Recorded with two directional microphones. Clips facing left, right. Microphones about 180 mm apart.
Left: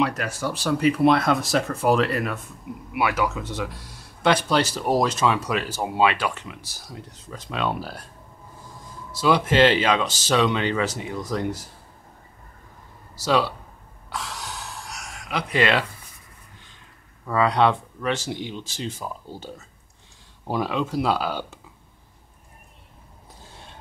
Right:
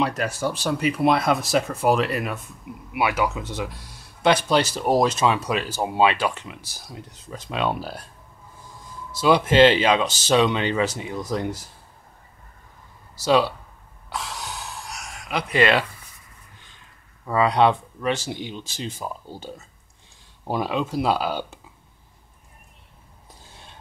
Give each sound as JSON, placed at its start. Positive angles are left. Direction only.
{"t": 0.0, "sound": "speech", "side_deg": -25}
{"t": 9.2, "sound": "speech", "side_deg": -20}
{"t": 13.2, "sound": "speech", "side_deg": -20}
{"t": 15.2, "sound": "speech", "side_deg": -5}
{"t": 17.3, "sound": "speech", "side_deg": -15}
{"t": 20.4, "sound": "speech", "side_deg": -15}